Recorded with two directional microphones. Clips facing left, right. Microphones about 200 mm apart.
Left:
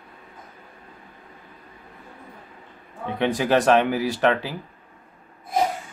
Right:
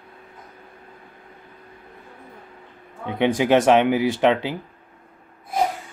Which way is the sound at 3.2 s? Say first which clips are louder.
Right 3 dB; 20° right (ahead or behind).